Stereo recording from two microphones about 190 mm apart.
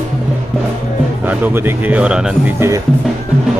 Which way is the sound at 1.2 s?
10° right (ahead or behind).